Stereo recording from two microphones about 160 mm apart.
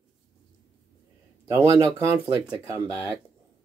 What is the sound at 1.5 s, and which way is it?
Speech, 15° right (ahead or behind).